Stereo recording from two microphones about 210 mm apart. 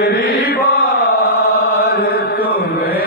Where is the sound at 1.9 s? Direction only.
45° left (ahead or behind).